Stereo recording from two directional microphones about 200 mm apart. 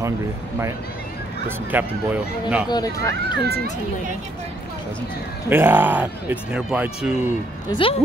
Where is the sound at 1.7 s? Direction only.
10° right (ahead or behind).